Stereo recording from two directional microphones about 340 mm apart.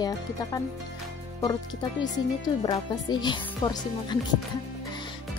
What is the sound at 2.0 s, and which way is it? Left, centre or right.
Speech, centre.